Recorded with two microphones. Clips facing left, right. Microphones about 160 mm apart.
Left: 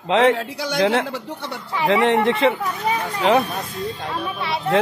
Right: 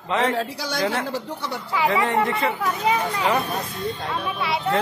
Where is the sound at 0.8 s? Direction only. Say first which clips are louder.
Left 5 dB; 65° left (ahead or behind).